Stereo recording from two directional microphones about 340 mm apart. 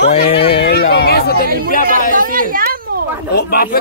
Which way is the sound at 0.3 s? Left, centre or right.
Centre.